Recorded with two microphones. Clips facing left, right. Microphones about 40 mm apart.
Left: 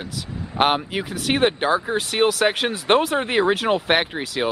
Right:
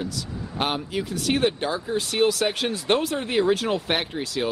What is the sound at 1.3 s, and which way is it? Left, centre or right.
Speech, left.